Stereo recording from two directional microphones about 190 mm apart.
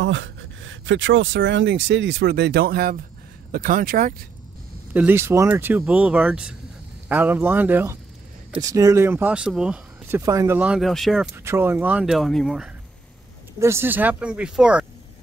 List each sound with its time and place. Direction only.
0.0 s speech: 80° right; by 4.1 s 50° right (ahead or behind)
4.9 s speech: 10° right (ahead or behind)
10.2 s speech: 15° right (ahead or behind); by 11.2 s centre (ahead or behind)
11.3 s speech: 10° right (ahead or behind)
13.6 s speech: 15° right (ahead or behind)